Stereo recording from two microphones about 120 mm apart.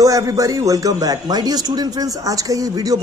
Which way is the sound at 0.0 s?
30° right (ahead or behind).